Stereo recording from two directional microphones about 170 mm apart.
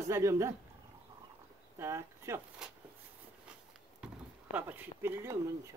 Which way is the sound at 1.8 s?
15° right (ahead or behind).